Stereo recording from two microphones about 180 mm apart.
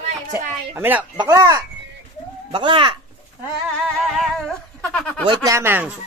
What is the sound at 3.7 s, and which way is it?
Speech, centre (ahead or behind).